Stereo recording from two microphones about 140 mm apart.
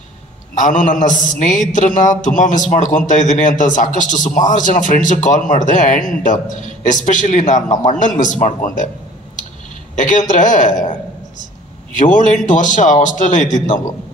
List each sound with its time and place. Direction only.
0.6 s a man's voice: 65° left (ahead or behind)
9.9 s speech: 65° left (ahead or behind)
11.9 s a man's voice: 65° left (ahead or behind)